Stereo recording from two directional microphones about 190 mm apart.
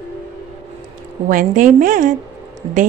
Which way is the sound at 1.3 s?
45° right (ahead or behind).